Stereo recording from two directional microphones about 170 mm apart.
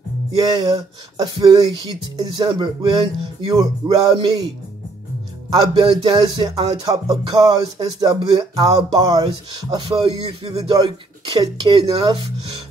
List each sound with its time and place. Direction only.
0.5 s speech: 20° right (ahead or behind)
5.5 s speech: 25° right (ahead or behind)